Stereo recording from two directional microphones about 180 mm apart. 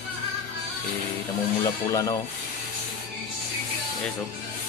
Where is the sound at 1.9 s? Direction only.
20° left (ahead or behind).